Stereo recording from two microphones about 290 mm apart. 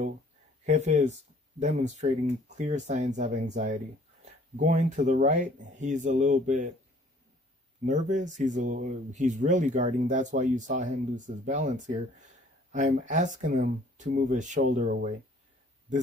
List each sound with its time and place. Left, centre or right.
0.7 s speech: right
7.8 s speech: right